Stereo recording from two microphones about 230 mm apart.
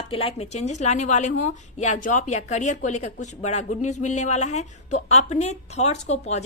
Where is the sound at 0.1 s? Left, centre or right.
Left.